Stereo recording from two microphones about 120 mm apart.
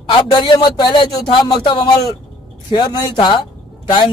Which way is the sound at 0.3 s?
40° left (ahead or behind).